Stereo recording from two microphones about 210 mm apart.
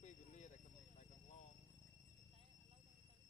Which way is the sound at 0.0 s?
35° left (ahead or behind).